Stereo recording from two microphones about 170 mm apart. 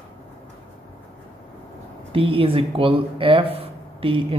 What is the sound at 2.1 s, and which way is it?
Speech, 35° right (ahead or behind).